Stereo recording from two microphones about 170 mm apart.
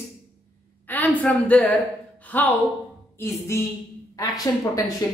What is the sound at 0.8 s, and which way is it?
A woman's voice, 10° left (ahead or behind).